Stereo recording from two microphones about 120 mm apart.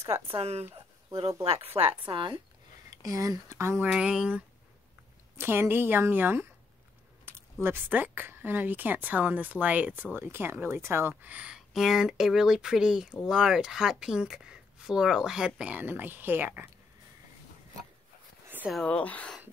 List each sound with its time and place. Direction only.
0.3 s speech: 60° right (ahead or behind)
2.0 s speech: 45° right (ahead or behind)
3.0 s a woman's voice: 30° right (ahead or behind)
3.9 s a woman's voice: 10° right (ahead or behind)
7.6 s a woman's voice: 15° right (ahead or behind)
18.9 s speech: 10° left (ahead or behind)